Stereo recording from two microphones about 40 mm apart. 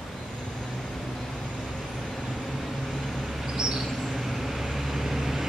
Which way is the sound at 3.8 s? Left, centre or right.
Centre.